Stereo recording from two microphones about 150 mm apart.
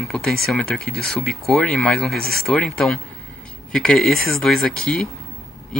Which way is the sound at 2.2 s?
90° right.